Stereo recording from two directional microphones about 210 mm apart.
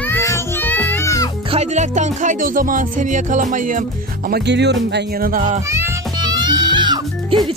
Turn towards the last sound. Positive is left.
turn(degrees=-20)  # may be behind; listen again after turning